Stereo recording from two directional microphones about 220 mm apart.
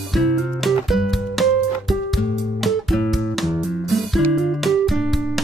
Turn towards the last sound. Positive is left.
turn(degrees=0)  # may be behind; listen again after turning